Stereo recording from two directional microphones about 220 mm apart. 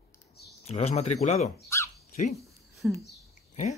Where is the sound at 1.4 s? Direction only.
15° left (ahead or behind).